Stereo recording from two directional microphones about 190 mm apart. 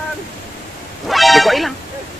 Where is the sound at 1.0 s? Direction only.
Centre (ahead or behind).